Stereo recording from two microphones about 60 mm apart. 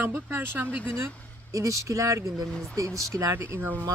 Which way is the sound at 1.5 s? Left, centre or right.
Right.